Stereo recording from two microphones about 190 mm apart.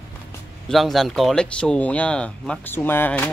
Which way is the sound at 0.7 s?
Centre (ahead or behind).